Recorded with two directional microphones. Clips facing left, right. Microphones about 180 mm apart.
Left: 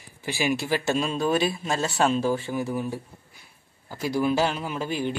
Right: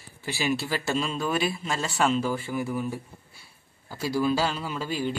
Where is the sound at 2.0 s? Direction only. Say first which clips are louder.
Left 1 dB; 25° left (ahead or behind).